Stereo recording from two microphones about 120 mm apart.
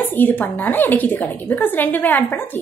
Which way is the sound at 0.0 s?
15° left (ahead or behind).